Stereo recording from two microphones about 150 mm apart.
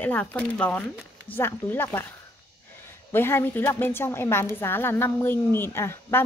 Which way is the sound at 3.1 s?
15° left (ahead or behind).